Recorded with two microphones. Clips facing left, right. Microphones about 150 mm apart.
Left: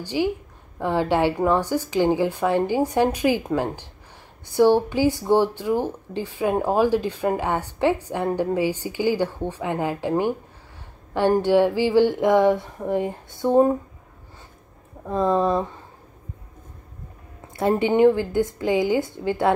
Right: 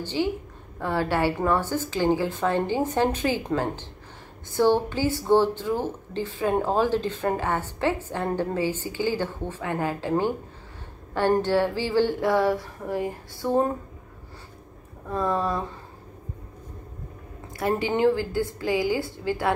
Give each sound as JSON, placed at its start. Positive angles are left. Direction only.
{"t": 0.0, "sound": "speech", "side_deg": 15}
{"t": 15.0, "sound": "a woman's voice", "side_deg": 20}
{"t": 17.6, "sound": "a woman's voice", "side_deg": 20}